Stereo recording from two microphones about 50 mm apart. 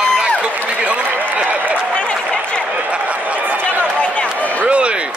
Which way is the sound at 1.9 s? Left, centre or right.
Left.